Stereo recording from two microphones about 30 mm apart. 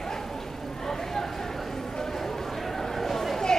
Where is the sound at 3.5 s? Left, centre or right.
Left.